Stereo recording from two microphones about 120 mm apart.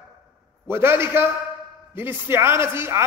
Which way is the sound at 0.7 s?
20° right (ahead or behind).